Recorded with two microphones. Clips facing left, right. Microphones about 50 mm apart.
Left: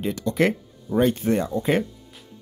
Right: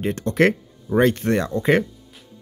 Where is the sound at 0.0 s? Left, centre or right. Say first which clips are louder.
Right 3 dB; right.